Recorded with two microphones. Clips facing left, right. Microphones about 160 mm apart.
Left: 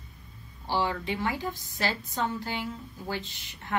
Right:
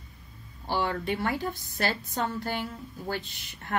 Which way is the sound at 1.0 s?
50° right (ahead or behind).